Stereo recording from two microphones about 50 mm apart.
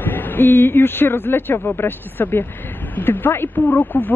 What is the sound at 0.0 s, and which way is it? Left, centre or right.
Speech, left.